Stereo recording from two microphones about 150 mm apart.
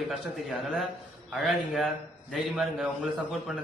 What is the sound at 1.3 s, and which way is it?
A man's voice, centre (ahead or behind).